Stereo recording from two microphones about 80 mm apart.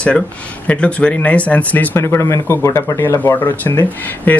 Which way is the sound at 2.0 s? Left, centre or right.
Left.